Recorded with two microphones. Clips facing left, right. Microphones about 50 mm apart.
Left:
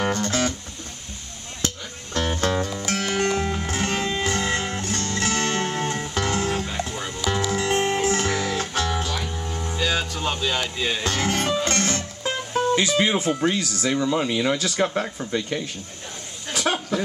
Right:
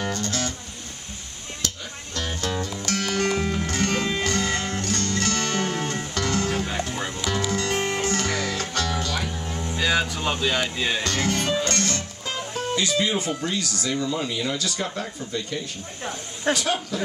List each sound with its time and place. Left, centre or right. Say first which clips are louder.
0.1 s music: left 4 dB; left
2.1 s music: left 5 dB; left
2.8 s music: left 1 dB; centre
3.3 s music: even; centre
6.6 s music: right 1 dB; centre
7.5 s music: left 3 dB; centre
9.1 s music: even; centre
9.8 s music: right 2 dB; centre
11.2 s music: left 2 dB; left
12.5 s speech: left 4 dB; left
13.6 s speech: left 3 dB; left